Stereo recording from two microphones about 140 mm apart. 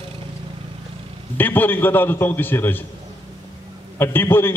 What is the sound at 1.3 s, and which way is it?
A man's voice, 15° left (ahead or behind).